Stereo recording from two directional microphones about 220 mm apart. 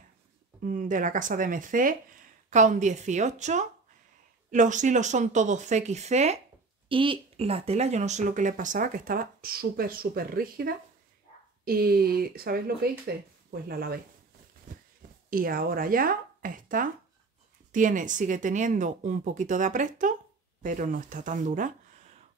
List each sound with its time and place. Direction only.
0.7 s speech: 35° right (ahead or behind)
15.2 s speech: 40° right (ahead or behind)